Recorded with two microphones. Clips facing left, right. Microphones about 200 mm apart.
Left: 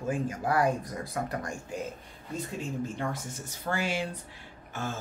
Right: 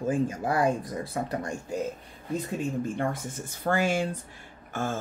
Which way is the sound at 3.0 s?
55° right (ahead or behind).